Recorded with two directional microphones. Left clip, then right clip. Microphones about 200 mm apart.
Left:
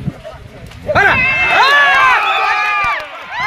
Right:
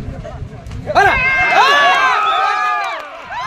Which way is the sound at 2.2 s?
50° right (ahead or behind).